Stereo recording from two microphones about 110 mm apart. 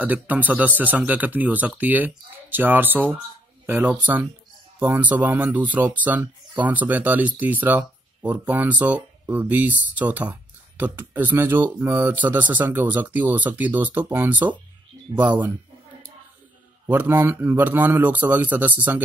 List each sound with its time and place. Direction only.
0.0 s speech: 15° right (ahead or behind)
16.8 s speech: 20° right (ahead or behind)